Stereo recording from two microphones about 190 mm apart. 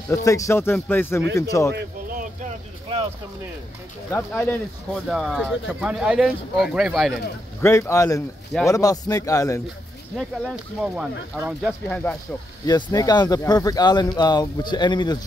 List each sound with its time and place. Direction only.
0.1 s speech: 15° left (ahead or behind)
1.7 s a sound: 55° right (ahead or behind)
4.4 s speech: 10° left (ahead or behind)
7.6 s speech: 15° left (ahead or behind)
10.1 s speech: 5° right (ahead or behind)
12.6 s speech: 20° left (ahead or behind)